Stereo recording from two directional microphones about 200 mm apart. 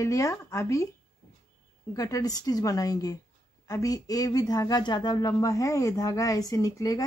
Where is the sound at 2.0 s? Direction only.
15° left (ahead or behind).